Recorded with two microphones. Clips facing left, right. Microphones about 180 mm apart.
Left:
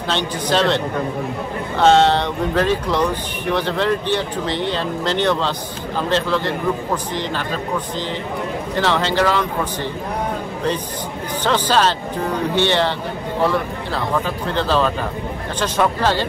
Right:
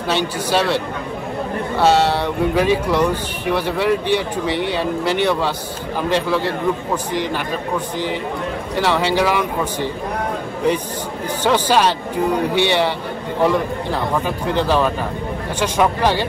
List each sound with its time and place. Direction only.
0.1 s speech: 10° right (ahead or behind)
8.7 s speech: 10° right (ahead or behind)
11.4 s speech: 10° right (ahead or behind)